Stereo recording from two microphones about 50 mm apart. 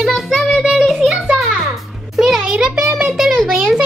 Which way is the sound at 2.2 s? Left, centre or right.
Centre.